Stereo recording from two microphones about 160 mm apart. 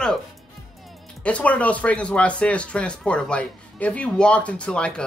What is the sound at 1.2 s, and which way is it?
Speech, 10° left (ahead or behind).